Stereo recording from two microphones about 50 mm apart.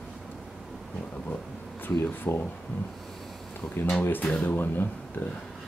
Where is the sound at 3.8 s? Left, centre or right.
Left.